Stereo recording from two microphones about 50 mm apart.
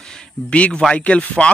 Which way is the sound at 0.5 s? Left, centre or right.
Left.